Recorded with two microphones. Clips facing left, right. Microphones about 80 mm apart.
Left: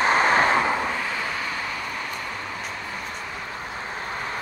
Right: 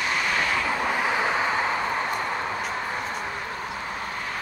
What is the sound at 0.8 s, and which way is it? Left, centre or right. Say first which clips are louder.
Vehicle: right 4 dB; centre.